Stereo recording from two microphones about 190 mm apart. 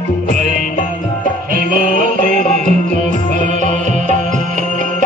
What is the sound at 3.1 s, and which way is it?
Music, 40° right (ahead or behind).